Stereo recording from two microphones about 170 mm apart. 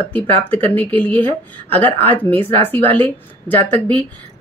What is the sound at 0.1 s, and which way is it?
Speech, 10° left (ahead or behind).